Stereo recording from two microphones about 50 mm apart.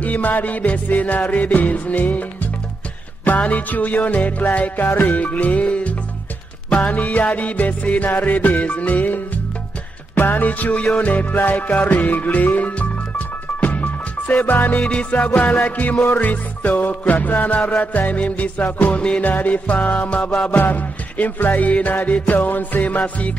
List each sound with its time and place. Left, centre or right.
0.0 s music: left
14.9 s music: left
18.9 s music: left
19.2 s music: left